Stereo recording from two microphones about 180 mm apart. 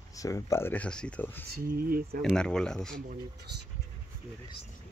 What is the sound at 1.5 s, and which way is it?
Speech, 55° right (ahead or behind).